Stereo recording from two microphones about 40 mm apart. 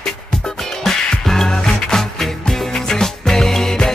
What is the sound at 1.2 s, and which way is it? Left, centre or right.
Music, centre.